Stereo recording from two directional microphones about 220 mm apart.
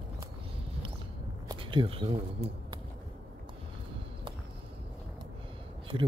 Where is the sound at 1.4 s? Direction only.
25° right (ahead or behind).